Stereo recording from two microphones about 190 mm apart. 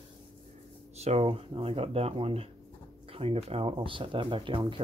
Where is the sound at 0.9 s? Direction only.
35° right (ahead or behind).